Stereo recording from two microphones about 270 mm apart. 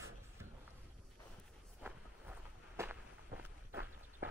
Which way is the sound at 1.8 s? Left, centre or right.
Centre.